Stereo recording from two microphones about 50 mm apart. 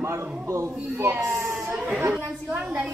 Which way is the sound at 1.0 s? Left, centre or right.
Right.